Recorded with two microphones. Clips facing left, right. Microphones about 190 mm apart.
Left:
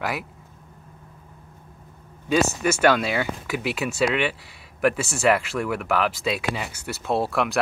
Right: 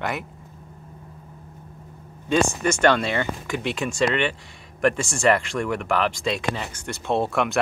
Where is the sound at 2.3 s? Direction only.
5° left (ahead or behind).